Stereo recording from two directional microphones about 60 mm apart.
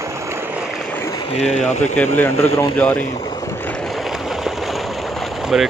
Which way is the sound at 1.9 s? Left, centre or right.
Left.